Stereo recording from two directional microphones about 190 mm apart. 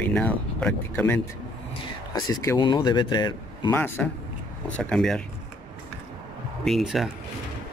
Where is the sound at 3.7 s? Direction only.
10° left (ahead or behind).